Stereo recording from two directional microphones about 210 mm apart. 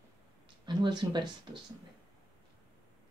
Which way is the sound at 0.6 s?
20° right (ahead or behind).